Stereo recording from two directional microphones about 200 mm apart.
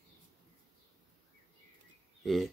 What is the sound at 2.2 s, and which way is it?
Speech, centre (ahead or behind).